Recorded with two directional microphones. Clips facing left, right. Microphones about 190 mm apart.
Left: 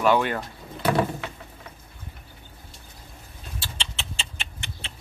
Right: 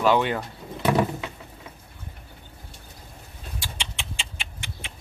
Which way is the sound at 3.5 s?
15° right (ahead or behind).